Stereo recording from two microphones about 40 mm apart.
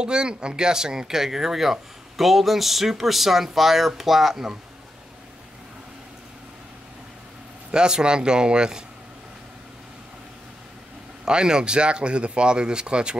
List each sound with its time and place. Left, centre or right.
0.0 s speech: right; by 4.5 s centre
7.7 s speech: centre
11.2 s speech: centre